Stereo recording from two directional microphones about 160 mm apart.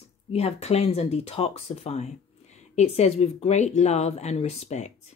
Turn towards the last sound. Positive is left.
turn(degrees=45)  # may be behind; listen again after turning